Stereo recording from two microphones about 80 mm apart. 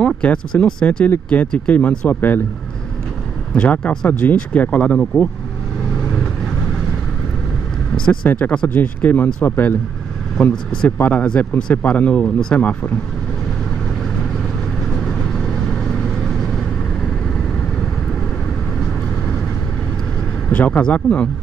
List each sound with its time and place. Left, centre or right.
0.0 s speech: centre
3.5 s speech: centre
4.1 s speech: left
8.3 s speech: centre
10.5 s speech: centre
15.0 s vehicle: centre
20.4 s speech: centre